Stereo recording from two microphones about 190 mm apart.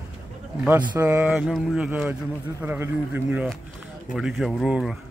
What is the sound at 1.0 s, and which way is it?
Speech, 10° right (ahead or behind).